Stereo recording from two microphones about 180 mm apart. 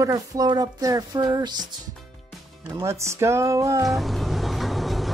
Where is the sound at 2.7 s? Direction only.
15° right (ahead or behind).